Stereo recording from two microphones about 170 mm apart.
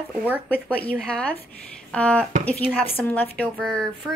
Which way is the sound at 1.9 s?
5° left (ahead or behind).